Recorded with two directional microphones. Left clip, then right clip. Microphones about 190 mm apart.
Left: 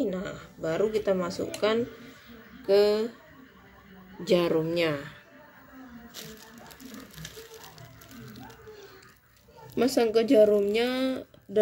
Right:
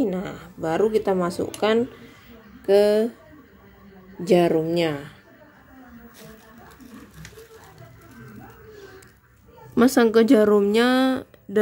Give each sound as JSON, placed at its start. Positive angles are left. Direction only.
{"t": 0.0, "sound": "speech", "side_deg": -45}
{"t": 4.2, "sound": "a woman's voice", "side_deg": -30}
{"t": 9.8, "sound": "speech", "side_deg": -55}